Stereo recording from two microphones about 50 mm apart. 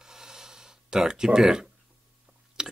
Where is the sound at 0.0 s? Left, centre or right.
Centre.